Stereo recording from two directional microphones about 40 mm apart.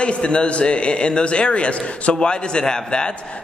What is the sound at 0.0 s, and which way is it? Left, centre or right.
A man's voice, left.